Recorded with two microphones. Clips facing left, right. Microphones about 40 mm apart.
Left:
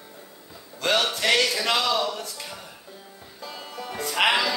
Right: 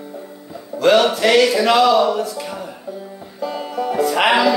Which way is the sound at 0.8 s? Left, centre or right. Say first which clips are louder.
Right 10 dB; centre.